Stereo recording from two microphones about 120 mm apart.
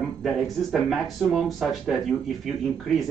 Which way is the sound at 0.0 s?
Centre (ahead or behind).